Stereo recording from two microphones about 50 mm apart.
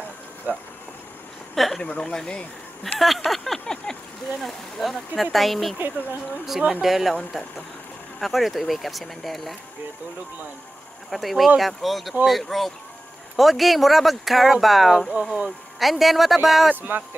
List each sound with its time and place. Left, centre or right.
0.5 s speech: right
1.5 s speech: centre
1.8 s speech: centre
2.8 s speech: centre
3.2 s a sound: centre
4.4 s speech: centre
6.8 s speech: centre
8.2 s speech: centre
11.1 s speech: centre